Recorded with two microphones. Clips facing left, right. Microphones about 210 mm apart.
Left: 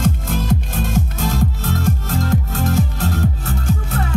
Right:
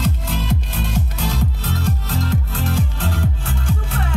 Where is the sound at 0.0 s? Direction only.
45° left (ahead or behind).